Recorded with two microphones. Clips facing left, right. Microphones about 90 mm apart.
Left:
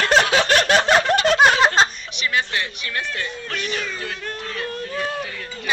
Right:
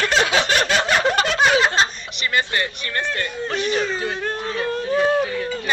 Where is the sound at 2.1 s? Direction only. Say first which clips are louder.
Right 1 dB; centre (ahead or behind).